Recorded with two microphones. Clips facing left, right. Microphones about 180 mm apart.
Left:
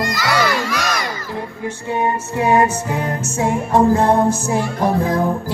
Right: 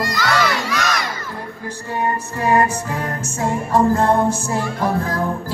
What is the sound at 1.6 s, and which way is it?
Music, 15° left (ahead or behind).